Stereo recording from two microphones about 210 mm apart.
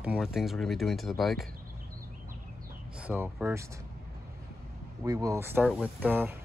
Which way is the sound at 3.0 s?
5° right (ahead or behind).